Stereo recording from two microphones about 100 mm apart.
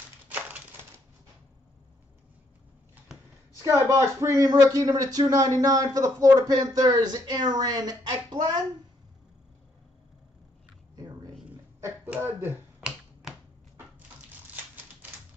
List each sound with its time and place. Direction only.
3.6 s speech: 30° right (ahead or behind)
11.0 s a sound: 40° right (ahead or behind)
12.1 s speech: 20° right (ahead or behind)